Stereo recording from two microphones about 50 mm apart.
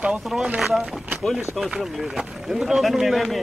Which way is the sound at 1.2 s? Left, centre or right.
Centre.